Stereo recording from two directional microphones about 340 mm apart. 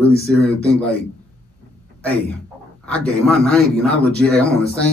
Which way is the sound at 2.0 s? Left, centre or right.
Centre.